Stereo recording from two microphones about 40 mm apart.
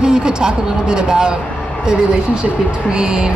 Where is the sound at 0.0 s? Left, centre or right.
Right.